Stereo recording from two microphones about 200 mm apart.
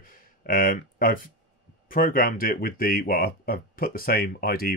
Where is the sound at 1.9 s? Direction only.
45° left (ahead or behind).